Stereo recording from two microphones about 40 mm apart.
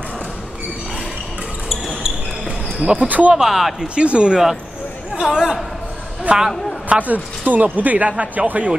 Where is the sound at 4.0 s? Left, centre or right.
Right.